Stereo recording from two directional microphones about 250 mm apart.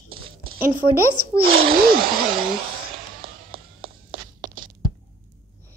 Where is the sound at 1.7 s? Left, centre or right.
Right.